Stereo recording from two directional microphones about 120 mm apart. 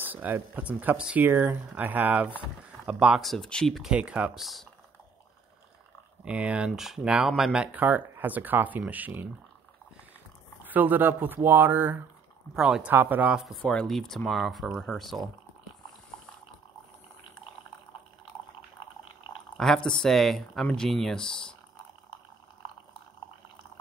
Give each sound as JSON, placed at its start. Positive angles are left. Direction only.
{"t": 0.0, "sound": "speech", "side_deg": -15}
{"t": 3.9, "sound": "speech", "side_deg": -10}
{"t": 6.2, "sound": "speech", "side_deg": -10}
{"t": 10.6, "sound": "speech", "side_deg": -15}
{"t": 12.5, "sound": "speech", "side_deg": -5}
{"t": 13.7, "sound": "speech", "side_deg": 5}
{"t": 19.5, "sound": "speech", "side_deg": 5}